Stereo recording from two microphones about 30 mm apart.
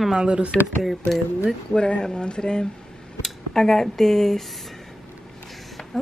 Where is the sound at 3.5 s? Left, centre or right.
Centre.